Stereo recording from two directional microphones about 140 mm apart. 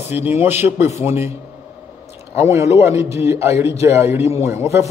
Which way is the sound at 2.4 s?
20° right (ahead or behind).